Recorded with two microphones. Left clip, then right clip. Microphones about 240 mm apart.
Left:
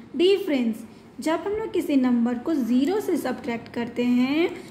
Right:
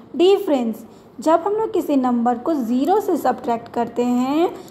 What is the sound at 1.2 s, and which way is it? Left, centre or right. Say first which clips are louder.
A woman's voice: right 8 dB; centre.